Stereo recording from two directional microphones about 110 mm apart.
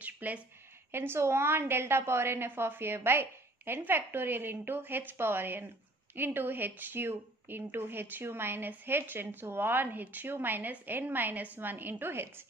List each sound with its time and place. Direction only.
0.0 s a woman's voice: 15° right (ahead or behind)